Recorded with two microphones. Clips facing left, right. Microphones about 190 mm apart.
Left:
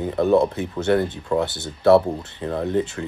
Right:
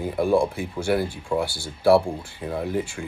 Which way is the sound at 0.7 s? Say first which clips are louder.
Left 4 dB; 10° right (ahead or behind).